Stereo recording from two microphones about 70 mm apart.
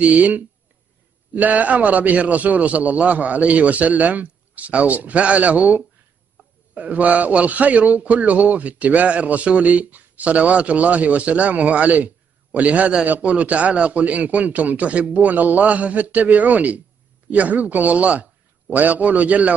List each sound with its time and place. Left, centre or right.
0.0 s a man's voice: right